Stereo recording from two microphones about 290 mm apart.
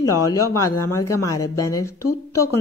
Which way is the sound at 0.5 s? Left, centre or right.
Left.